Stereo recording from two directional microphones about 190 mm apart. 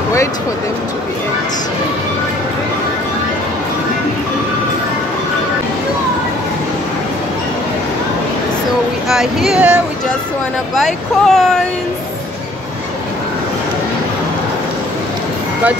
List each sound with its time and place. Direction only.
9.1 s speech: centre (ahead or behind)
10.8 s speech: centre (ahead or behind)